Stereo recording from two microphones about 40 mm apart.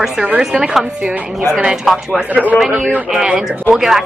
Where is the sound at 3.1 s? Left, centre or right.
Centre.